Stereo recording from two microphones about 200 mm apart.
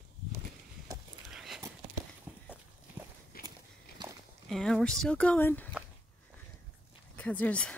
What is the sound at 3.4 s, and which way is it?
Walk, 50° left (ahead or behind).